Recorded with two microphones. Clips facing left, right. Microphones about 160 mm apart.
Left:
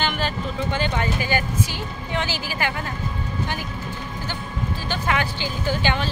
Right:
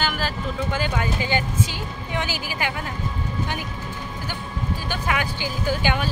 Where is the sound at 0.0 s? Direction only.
5° right (ahead or behind).